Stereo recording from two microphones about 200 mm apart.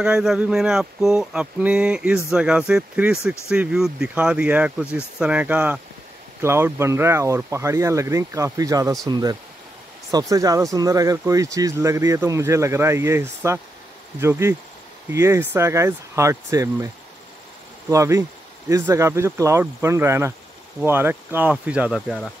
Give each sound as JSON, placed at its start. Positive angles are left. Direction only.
{"t": 0.0, "sound": "speech", "side_deg": -5}
{"t": 15.0, "sound": "speech", "side_deg": -15}